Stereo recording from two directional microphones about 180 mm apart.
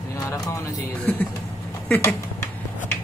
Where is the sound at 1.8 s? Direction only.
15° left (ahead or behind).